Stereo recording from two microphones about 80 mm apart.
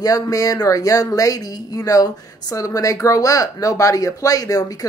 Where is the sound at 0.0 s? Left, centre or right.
Left.